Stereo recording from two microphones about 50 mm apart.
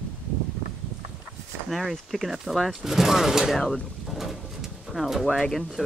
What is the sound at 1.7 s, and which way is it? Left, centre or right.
Speech, centre.